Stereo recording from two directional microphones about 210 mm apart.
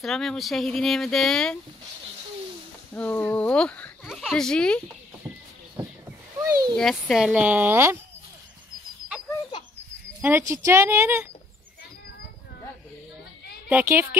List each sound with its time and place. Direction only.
0.0 s speech: centre (ahead or behind)
2.9 s speech: 5° left (ahead or behind)
6.4 s a sound: 20° right (ahead or behind)
6.8 s speech: centre (ahead or behind)
10.2 s speech: 10° right (ahead or behind)
13.7 s speech: 10° right (ahead or behind)